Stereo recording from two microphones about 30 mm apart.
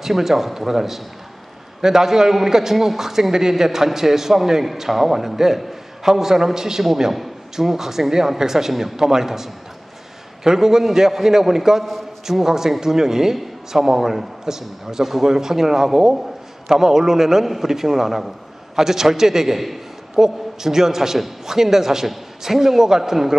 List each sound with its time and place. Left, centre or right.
0.0 s a man's voice: centre